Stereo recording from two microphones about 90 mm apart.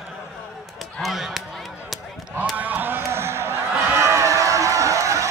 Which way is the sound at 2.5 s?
20° right (ahead or behind).